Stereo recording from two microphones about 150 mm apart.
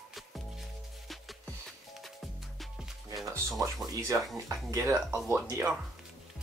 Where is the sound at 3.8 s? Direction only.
20° right (ahead or behind).